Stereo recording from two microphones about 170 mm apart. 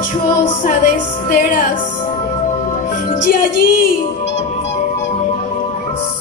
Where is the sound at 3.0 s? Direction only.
60° left (ahead or behind).